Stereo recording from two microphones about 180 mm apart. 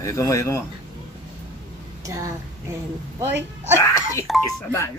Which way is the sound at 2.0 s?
20° right (ahead or behind).